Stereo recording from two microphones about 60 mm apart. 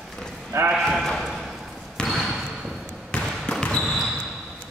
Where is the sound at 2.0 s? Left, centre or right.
Centre.